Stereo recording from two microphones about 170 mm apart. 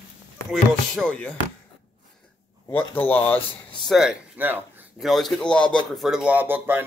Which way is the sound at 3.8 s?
Centre (ahead or behind).